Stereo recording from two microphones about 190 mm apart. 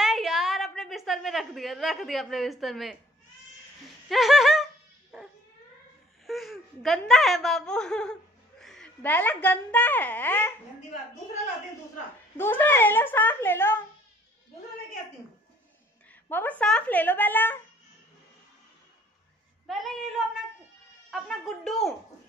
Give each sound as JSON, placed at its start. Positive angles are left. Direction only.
{"t": 0.0, "sound": "a sound", "side_deg": 0}
{"t": 4.1, "sound": "speech", "side_deg": 0}
{"t": 5.1, "sound": "dog", "side_deg": 0}
{"t": 6.2, "sound": "speech", "side_deg": 0}
{"t": 12.4, "sound": "speech", "side_deg": 10}
{"t": 16.1, "sound": "speech", "side_deg": 10}
{"t": 19.7, "sound": "speech", "side_deg": 0}
{"t": 21.1, "sound": "speech", "side_deg": 0}